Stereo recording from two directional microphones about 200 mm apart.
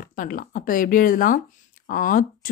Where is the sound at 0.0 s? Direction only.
45° left (ahead or behind).